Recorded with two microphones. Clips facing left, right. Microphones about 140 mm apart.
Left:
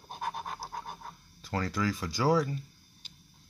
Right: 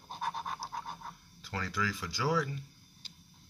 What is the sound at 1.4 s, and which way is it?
Speech, 45° left (ahead or behind).